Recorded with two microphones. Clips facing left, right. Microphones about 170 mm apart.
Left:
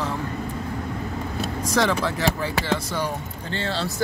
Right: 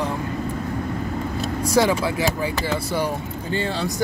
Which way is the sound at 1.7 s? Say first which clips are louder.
Right 3 dB; 10° right (ahead or behind).